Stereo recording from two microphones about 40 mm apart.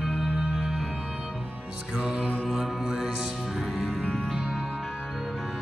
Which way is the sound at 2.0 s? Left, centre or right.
Centre.